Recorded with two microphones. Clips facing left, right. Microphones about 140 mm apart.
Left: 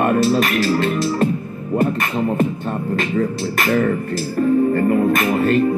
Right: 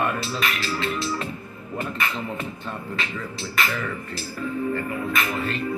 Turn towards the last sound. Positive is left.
turn(degrees=45)  # may be behind; listen again after turning